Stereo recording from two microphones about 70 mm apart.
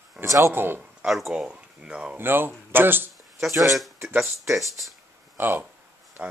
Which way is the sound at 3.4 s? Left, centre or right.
Centre.